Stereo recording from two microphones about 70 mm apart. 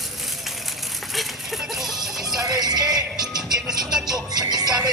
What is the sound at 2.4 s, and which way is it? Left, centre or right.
Music, right.